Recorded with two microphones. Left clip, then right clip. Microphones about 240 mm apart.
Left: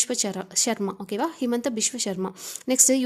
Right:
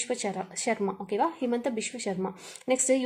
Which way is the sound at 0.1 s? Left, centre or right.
Left.